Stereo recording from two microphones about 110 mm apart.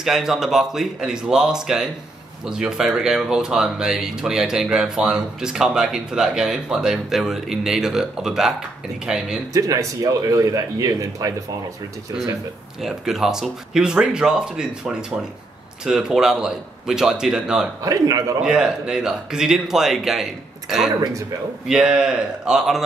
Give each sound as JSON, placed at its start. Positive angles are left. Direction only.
{"t": 0.0, "sound": "speech", "side_deg": -5}
{"t": 9.5, "sound": "speech", "side_deg": -30}
{"t": 12.8, "sound": "speech", "side_deg": -5}
{"t": 17.8, "sound": "speech", "side_deg": -35}
{"t": 18.4, "sound": "speech", "side_deg": -5}
{"t": 21.6, "sound": "speech", "side_deg": -5}